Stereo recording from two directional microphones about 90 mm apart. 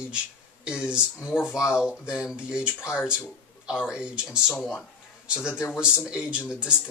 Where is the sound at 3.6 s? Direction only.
10° right (ahead or behind).